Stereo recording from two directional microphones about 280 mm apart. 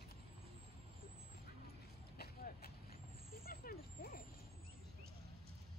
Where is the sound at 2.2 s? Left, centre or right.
Left.